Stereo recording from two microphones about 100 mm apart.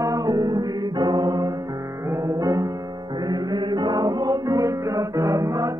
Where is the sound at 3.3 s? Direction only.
45° right (ahead or behind).